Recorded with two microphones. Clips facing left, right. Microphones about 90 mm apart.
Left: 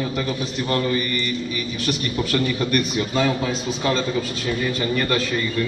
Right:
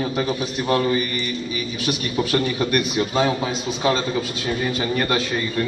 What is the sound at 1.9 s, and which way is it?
A man's voice, 10° right (ahead or behind).